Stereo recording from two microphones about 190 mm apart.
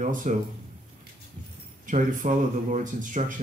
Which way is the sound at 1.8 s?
45° right (ahead or behind).